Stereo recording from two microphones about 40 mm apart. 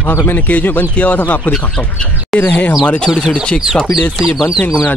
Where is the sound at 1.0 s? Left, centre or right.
Left.